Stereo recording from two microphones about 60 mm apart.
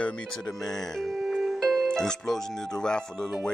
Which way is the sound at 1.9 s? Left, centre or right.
Centre.